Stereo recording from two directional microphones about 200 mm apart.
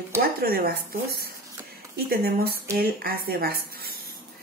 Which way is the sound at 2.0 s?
50° right (ahead or behind).